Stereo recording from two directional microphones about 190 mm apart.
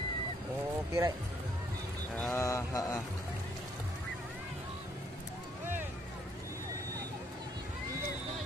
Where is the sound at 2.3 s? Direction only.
15° left (ahead or behind).